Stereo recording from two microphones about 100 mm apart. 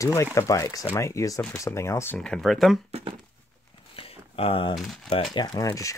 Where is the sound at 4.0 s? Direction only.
70° left (ahead or behind).